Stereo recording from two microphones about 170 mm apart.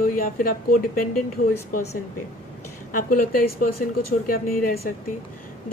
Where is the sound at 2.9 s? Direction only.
55° left (ahead or behind).